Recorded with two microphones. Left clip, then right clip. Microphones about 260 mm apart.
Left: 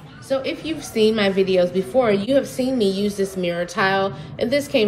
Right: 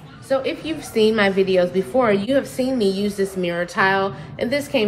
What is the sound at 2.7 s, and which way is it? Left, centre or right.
A woman's voice, centre.